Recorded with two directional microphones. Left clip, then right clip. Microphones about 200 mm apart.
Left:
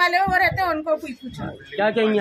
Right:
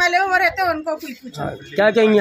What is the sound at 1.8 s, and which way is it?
Speech, 55° right (ahead or behind).